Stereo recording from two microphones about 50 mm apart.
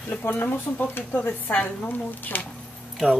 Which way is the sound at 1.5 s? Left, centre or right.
Left.